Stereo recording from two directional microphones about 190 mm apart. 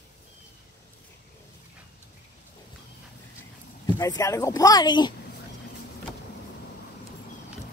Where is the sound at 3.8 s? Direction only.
15° left (ahead or behind).